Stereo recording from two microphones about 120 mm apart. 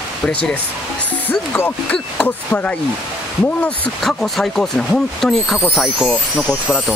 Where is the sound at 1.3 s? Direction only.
20° left (ahead or behind); by 6.2 s centre (ahead or behind).